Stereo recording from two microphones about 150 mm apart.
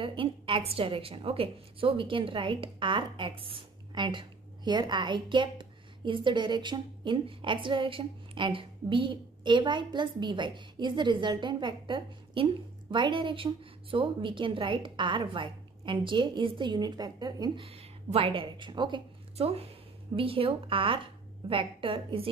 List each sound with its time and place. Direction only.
0.0 s a woman's voice: 35° right (ahead or behind)